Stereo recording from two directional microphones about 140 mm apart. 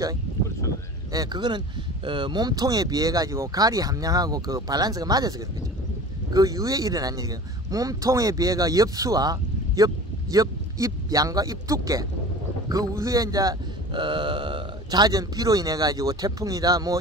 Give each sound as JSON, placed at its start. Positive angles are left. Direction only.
{"t": 1.1, "sound": "speech", "side_deg": -30}
{"t": 6.3, "sound": "speech", "side_deg": -25}